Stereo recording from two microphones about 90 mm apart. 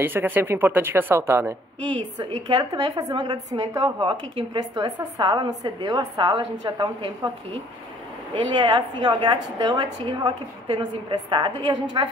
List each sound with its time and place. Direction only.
0.0 s a woman's voice: 20° right (ahead or behind)
2.1 s a woman's voice: 55° right (ahead or behind)
4.6 s a woman's voice: 45° right (ahead or behind)
5.2 s a woman's voice: 60° right (ahead or behind)
8.5 s a woman's voice: 55° right (ahead or behind)